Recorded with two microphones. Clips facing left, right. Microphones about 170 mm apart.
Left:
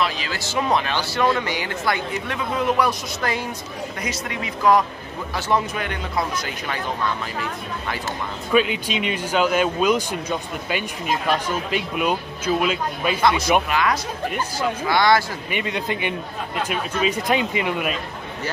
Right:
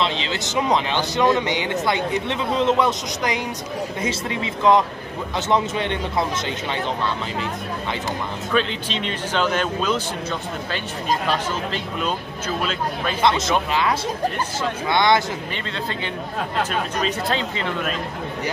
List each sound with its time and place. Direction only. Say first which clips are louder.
0.0 s speech: right 1 dB; 25° right (ahead or behind)
4.0 s speech: right 2 dB; 25° right (ahead or behind)
8.5 s speech: left 4 dB; 10° left (ahead or behind)
13.7 s speech: even; 25° right (ahead or behind)
15.5 s speech: left 3 dB; 15° left (ahead or behind)